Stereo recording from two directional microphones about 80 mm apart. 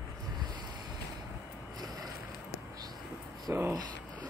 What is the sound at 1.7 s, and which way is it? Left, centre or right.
Vehicle, right.